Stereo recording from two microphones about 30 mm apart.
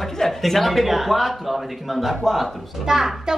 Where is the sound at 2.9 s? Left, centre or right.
Centre.